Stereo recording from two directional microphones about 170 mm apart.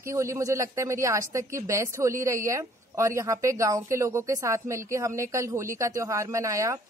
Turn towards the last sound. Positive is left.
turn(degrees=-15)  # may be behind; listen again after turning